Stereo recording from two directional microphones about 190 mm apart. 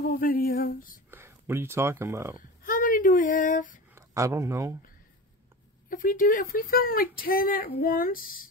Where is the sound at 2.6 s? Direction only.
45° left (ahead or behind).